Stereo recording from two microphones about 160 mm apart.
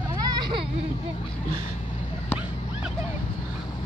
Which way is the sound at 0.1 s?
25° right (ahead or behind).